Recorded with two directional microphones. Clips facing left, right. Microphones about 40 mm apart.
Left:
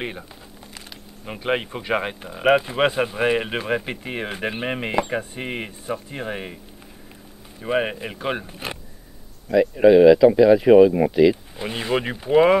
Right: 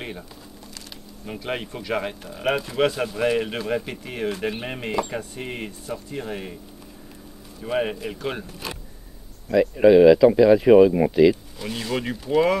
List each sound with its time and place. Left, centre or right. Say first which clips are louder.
0.0 s speech: left 3 dB; left
7.6 s speech: left 2 dB; left
9.5 s speech: left 1 dB; centre
11.5 s speech: left 4 dB; left